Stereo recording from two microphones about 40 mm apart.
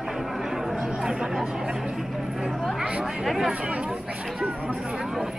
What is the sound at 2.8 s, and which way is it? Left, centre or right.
Chatter, right.